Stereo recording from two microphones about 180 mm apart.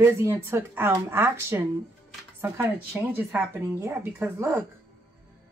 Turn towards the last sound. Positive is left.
turn(degrees=-15)  # may be behind; listen again after turning